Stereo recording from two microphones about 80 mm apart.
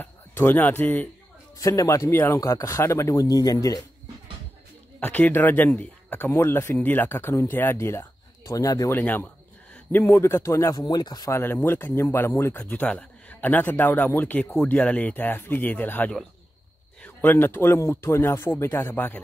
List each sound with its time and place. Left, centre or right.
0.5 s speech: left
1.6 s speech: left
5.0 s speech: left
6.3 s speech: left
6.8 s speech: left
8.5 s speech: left
8.9 s speech: left
10.7 s speech: left
11.3 s speech: left
12.6 s speech: centre